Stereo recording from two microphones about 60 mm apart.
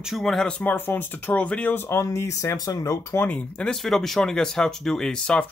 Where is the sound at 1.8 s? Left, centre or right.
Left.